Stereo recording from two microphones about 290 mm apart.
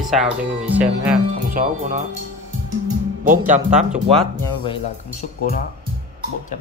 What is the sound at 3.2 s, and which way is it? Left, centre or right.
Speech, right.